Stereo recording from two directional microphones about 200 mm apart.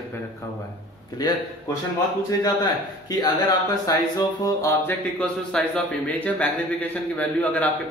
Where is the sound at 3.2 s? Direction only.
20° left (ahead or behind).